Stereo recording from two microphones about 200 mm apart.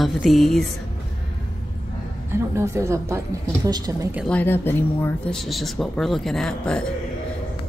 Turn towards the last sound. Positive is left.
turn(degrees=5)  # may be behind; listen again after turning